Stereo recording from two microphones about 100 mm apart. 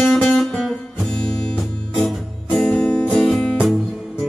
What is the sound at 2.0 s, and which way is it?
Music, 5° left (ahead or behind).